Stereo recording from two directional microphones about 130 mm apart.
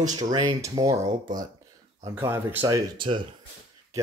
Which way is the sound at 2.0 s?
20° right (ahead or behind).